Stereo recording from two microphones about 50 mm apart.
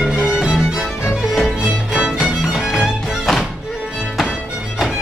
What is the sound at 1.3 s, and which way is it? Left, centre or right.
Music, centre.